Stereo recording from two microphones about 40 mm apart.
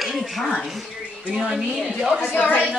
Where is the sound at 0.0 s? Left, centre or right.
Centre.